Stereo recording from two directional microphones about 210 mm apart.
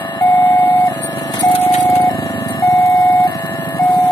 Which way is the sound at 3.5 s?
10° left (ahead or behind).